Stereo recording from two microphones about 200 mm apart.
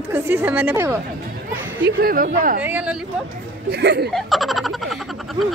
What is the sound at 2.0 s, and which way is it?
Speech, 45° right (ahead or behind).